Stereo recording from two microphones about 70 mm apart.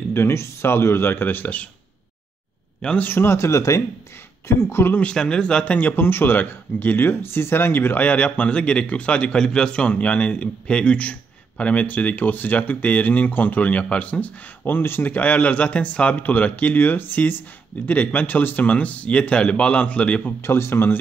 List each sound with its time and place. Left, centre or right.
0.1 s speech: left
3.0 s speech: left
5.1 s a man's voice: centre
5.8 s a man's voice: left
20.2 s speech: left